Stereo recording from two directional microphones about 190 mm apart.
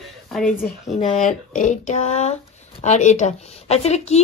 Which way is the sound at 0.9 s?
40° left (ahead or behind).